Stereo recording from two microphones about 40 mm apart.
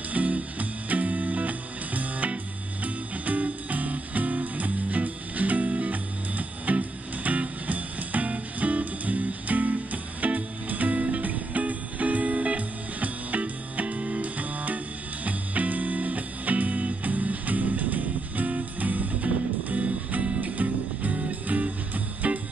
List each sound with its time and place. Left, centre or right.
0.1 s music: right